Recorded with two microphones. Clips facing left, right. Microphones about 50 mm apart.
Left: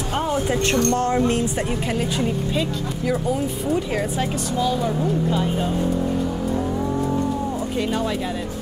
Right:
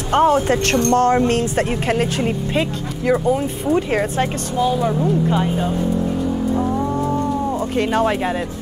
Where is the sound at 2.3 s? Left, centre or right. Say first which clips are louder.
Right 3 dB; right; by 5.8 s centre.